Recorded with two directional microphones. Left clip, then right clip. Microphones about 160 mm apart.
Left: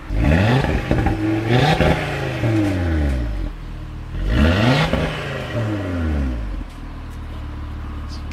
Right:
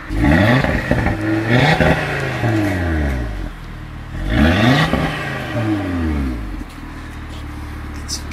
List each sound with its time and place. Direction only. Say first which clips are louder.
0.2 s vehicle: right 5 dB; 30° left (ahead or behind)
4.3 s vehicle: right 3 dB; 25° left (ahead or behind)